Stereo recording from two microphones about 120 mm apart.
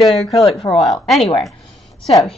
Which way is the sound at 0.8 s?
Centre (ahead or behind).